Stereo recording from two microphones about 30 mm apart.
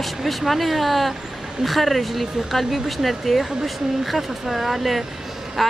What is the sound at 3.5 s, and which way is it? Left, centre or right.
Speech, centre.